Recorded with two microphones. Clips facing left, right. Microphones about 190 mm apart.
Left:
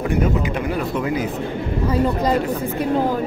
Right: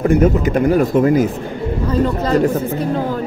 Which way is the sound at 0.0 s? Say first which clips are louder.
Right 7 dB; 45° right (ahead or behind).